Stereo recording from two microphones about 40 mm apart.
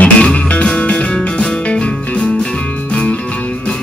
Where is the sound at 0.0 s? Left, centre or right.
Left.